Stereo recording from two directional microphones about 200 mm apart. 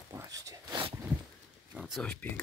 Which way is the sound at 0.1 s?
15° right (ahead or behind).